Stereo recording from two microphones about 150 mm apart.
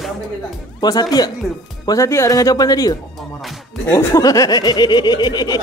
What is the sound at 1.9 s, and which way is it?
Snicker, 20° left (ahead or behind).